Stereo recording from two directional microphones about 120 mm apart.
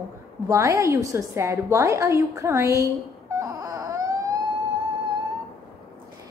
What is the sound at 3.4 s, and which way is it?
Wail, 30° right (ahead or behind).